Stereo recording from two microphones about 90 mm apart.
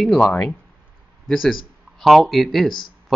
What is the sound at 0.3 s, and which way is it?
Speech, 20° left (ahead or behind).